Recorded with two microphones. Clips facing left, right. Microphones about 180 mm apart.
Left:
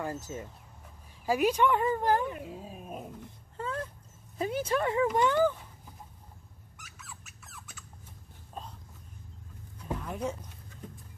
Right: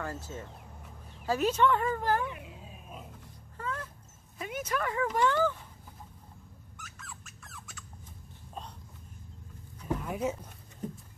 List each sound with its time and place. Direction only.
0.0 s speech: 15° left (ahead or behind)
2.2 s speech: 45° left (ahead or behind)
3.5 s dog: 30° left (ahead or behind)
4.4 s speech: 30° left (ahead or behind)
6.8 s squeak: 5° left (ahead or behind)
10.0 s speech: 5° right (ahead or behind)